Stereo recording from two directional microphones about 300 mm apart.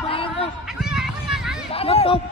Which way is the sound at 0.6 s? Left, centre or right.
Centre.